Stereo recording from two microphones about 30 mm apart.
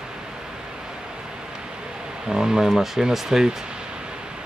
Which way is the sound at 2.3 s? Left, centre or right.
Centre.